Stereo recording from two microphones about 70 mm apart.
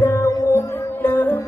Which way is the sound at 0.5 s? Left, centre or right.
Left.